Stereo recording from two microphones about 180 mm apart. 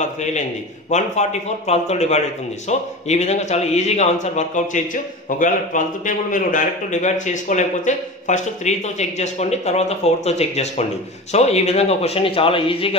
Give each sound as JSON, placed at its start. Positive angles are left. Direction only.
{"t": 0.0, "sound": "a man's voice", "side_deg": 40}